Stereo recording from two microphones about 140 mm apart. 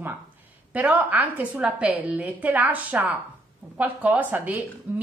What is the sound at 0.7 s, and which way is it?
A woman's voice, 10° right (ahead or behind).